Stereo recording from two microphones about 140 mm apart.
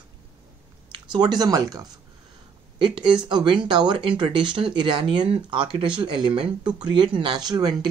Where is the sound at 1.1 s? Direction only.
30° right (ahead or behind).